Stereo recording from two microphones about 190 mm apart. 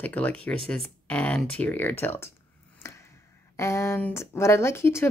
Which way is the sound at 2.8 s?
15° left (ahead or behind).